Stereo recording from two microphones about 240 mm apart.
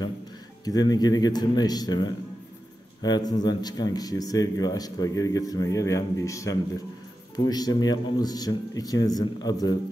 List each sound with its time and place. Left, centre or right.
0.7 s speech: centre